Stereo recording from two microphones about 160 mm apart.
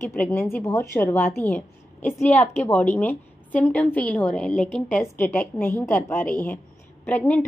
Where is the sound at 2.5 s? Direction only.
10° left (ahead or behind).